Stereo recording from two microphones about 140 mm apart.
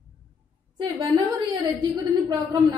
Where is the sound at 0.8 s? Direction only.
35° right (ahead or behind).